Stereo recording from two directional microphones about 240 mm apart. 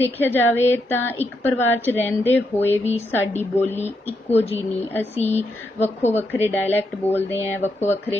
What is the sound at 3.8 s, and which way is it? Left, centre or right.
Speech, left.